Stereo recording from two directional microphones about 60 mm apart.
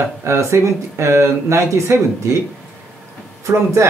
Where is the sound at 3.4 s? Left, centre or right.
Right.